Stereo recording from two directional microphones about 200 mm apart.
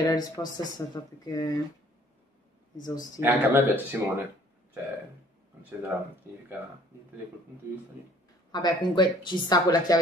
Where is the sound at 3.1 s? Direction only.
10° right (ahead or behind).